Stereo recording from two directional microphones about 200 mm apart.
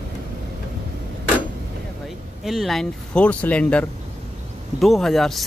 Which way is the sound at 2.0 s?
Centre (ahead or behind).